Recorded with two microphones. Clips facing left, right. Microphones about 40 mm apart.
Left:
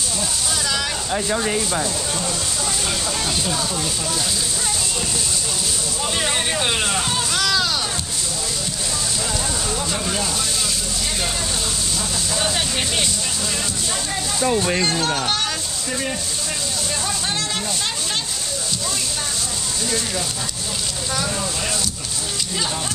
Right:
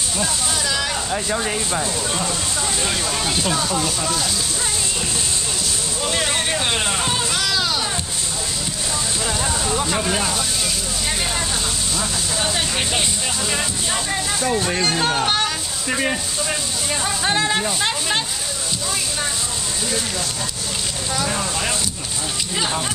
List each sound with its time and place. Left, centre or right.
2.9 s speech: centre
6.1 s a sound: centre
9.8 s speech: centre
12.5 s vehicle: centre
14.4 s speech: centre
15.0 s speech: centre
15.9 s speech: right